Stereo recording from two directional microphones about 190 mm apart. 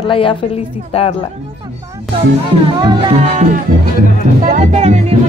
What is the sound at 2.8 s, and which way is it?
Speech, 25° right (ahead or behind).